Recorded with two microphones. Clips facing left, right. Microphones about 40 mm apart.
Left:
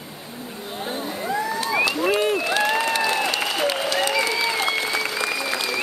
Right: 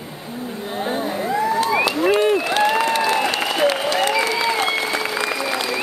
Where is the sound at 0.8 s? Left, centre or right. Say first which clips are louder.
Right 4 dB; centre.